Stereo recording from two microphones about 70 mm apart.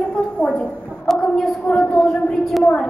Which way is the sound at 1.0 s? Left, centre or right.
Centre.